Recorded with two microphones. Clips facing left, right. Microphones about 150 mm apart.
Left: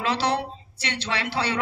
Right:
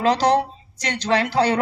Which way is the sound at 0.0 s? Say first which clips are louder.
Right 7 dB; 40° right (ahead or behind).